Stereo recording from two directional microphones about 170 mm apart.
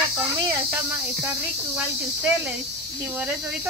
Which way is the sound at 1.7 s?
10° right (ahead or behind).